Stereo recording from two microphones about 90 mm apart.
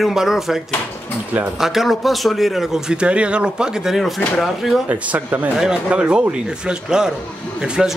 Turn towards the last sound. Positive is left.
turn(degrees=-5)  # may be behind; listen again after turning